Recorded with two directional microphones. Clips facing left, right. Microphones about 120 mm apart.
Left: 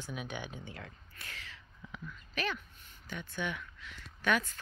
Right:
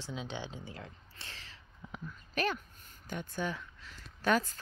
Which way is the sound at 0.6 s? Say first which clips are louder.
Right 1 dB; 30° right (ahead or behind).